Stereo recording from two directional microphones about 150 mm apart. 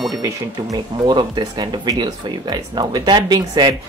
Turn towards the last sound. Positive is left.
turn(degrees=-30)  # may be behind; listen again after turning